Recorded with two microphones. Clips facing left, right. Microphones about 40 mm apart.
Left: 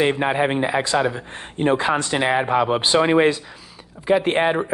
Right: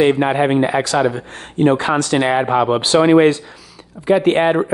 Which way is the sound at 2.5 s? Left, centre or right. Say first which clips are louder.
Right 3 dB; right.